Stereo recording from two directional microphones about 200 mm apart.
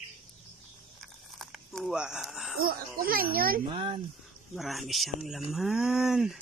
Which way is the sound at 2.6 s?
45° right (ahead or behind).